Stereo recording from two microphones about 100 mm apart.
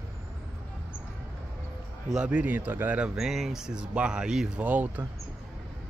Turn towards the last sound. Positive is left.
turn(degrees=-15)  # may be behind; listen again after turning